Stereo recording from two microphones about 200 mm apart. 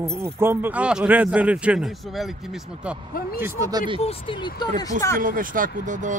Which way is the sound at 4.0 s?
25° left (ahead or behind).